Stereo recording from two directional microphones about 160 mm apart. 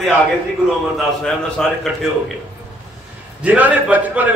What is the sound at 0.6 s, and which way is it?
A man's voice, centre (ahead or behind).